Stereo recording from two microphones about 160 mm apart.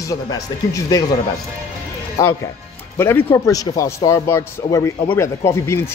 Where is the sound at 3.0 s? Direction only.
15° left (ahead or behind).